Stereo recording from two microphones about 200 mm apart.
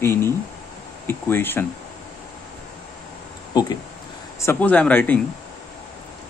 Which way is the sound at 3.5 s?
20° left (ahead or behind).